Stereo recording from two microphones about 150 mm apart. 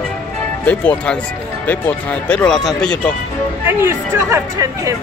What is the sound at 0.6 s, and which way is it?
Speech, 10° left (ahead or behind).